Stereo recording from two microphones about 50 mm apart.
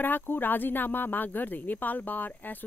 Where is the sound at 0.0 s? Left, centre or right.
Left.